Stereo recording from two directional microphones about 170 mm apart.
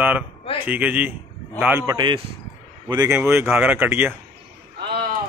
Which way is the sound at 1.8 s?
25° right (ahead or behind).